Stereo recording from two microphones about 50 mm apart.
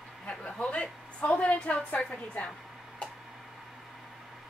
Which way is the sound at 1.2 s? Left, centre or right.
Centre.